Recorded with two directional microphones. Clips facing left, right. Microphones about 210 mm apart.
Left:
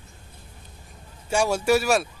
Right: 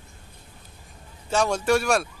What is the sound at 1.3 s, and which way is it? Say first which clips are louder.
Speech: left 1 dB; 10° left (ahead or behind).